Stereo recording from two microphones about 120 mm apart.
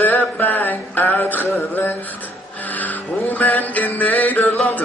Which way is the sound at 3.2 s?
15° left (ahead or behind).